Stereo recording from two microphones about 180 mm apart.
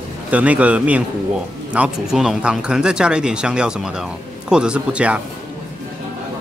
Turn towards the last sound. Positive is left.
turn(degrees=-5)  # may be behind; listen again after turning